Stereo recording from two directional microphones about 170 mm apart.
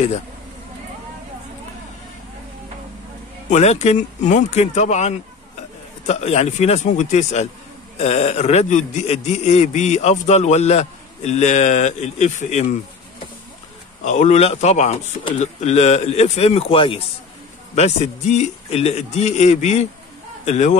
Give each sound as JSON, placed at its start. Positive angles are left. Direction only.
{"t": 3.4, "sound": "a man's voice", "side_deg": 40}
{"t": 14.0, "sound": "a man's voice", "side_deg": 45}